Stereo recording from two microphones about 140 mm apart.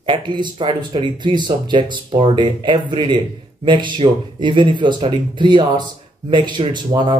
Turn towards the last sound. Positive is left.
turn(degrees=-35)  # may be behind; listen again after turning